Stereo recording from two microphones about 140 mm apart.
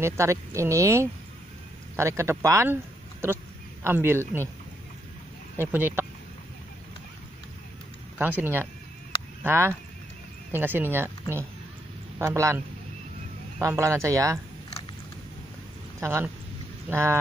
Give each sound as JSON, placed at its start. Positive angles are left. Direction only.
{"t": 0.0, "sound": "speech", "side_deg": -20}
{"t": 5.6, "sound": "speech", "side_deg": -15}
{"t": 8.2, "sound": "speech", "side_deg": -15}
{"t": 16.0, "sound": "speech", "side_deg": -20}